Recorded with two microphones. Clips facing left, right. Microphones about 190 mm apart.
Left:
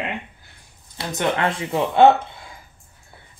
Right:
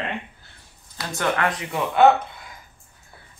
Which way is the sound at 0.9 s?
25° left (ahead or behind).